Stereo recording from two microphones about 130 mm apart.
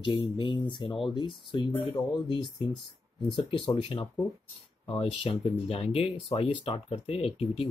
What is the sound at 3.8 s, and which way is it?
Speech, 45° left (ahead or behind).